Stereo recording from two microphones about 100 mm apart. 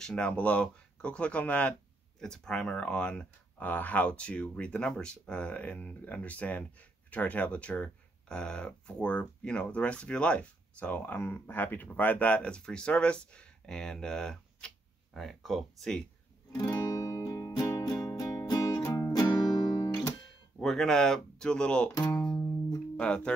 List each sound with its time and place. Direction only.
0.0 s speech: 10° left (ahead or behind)
16.5 s music: 40° left (ahead or behind)
20.5 s speech: 5° left (ahead or behind)
21.9 s speech: 40° left (ahead or behind)
22.9 s speech: 10° left (ahead or behind)